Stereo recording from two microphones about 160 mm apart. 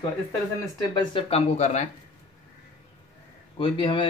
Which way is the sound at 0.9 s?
30° left (ahead or behind).